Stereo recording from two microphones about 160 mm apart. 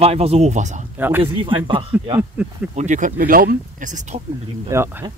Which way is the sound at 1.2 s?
35° right (ahead or behind).